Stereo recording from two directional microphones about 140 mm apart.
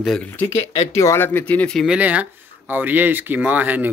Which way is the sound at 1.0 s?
15° left (ahead or behind).